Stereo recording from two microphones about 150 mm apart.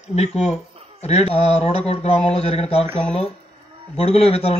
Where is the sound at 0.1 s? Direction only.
45° left (ahead or behind).